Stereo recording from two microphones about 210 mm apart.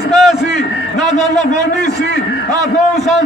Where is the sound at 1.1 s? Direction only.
35° left (ahead or behind).